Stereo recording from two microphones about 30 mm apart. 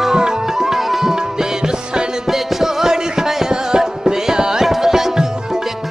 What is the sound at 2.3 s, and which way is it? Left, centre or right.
Music, centre.